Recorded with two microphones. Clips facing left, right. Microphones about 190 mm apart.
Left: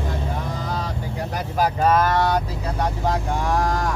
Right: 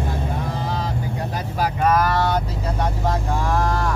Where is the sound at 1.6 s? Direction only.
30° left (ahead or behind).